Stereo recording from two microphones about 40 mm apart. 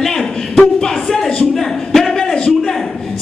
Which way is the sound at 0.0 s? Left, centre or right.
Centre.